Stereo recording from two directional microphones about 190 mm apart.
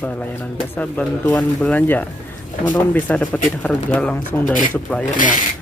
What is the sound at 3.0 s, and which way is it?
Speech, 5° left (ahead or behind).